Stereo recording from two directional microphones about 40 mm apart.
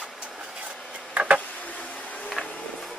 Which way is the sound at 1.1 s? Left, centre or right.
Right.